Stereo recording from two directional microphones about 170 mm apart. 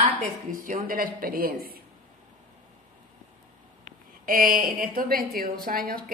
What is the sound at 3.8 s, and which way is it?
A woman's voice, 55° right (ahead or behind).